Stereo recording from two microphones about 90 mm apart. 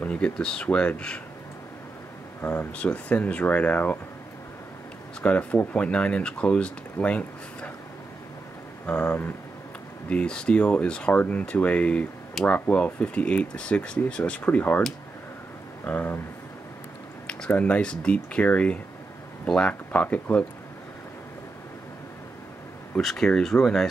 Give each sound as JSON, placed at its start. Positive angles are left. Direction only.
{"t": 0.0, "sound": "speech", "side_deg": 10}
{"t": 2.4, "sound": "speech", "side_deg": 15}
{"t": 5.2, "sound": "speech", "side_deg": 15}
{"t": 8.8, "sound": "speech", "side_deg": 15}
{"t": 15.8, "sound": "speech", "side_deg": 20}
{"t": 17.5, "sound": "speech", "side_deg": 15}
{"t": 22.9, "sound": "speech", "side_deg": 5}